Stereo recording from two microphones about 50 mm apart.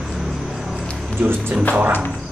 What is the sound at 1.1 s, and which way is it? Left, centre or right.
Music, right.